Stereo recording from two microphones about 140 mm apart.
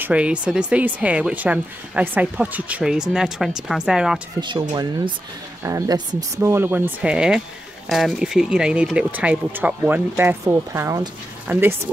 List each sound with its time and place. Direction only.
0.0 s speech: 10° right (ahead or behind)
4.4 s speech: 30° right (ahead or behind); by 11.6 s 15° right (ahead or behind)